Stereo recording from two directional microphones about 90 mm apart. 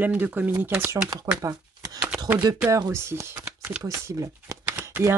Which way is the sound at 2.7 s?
35° right (ahead or behind).